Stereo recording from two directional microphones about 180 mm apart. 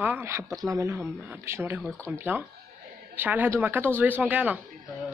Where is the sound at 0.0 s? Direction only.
10° right (ahead or behind).